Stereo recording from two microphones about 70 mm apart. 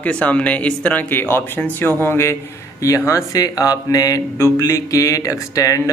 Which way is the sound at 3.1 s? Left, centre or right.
Left.